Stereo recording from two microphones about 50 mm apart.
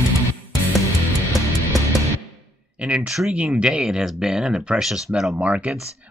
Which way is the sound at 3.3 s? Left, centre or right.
Right.